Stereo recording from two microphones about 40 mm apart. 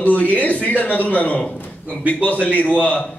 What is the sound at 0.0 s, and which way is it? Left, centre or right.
A man's voice, left.